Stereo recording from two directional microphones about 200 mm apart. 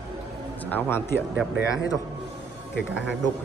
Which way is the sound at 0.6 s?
10° left (ahead or behind).